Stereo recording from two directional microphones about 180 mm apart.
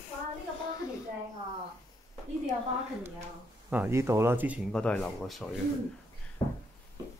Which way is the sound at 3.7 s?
10° right (ahead or behind).